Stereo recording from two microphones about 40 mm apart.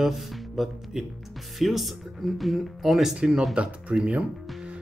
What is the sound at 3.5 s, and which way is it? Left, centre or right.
Speech, right.